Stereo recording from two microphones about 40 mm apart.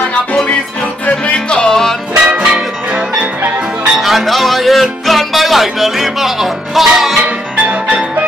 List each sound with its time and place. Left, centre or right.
1.2 s music: left
1.7 s music: centre
2.2 s music: right
4.0 s music: centre
5.0 s speech: centre